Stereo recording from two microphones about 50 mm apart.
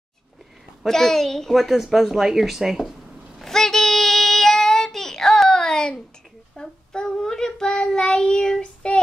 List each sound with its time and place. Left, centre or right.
0.8 s a woman's voice: centre
3.3 s child singing: centre
6.5 s humming: centre
7.6 s child singing: left